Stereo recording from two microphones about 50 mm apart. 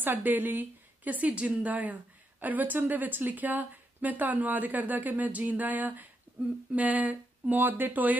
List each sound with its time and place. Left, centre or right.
0.0 s speech: right
6.3 s a sound: right
6.7 s speech: right